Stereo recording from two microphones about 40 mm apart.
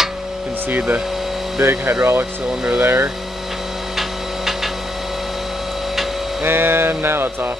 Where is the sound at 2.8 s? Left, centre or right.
Right.